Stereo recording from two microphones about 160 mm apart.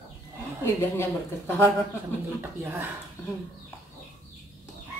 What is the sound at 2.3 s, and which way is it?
Speech, 15° right (ahead or behind).